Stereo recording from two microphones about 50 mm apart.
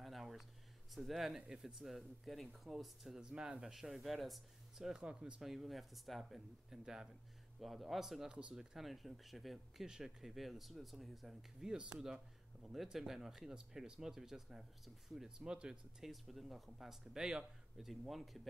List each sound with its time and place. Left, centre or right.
0.0 s a sound: centre
0.9 s speech: centre
3.7 s speech: centre
5.4 s speech: centre
8.3 s speech: right
8.5 s speech: centre
9.8 s speech: centre
11.6 s speech: centre
16.0 s speech: centre